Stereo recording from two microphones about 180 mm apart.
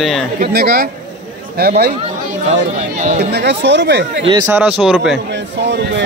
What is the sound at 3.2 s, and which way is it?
Speech, 70° right (ahead or behind).